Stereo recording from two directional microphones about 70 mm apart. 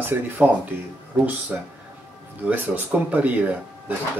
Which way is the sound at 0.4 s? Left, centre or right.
Right.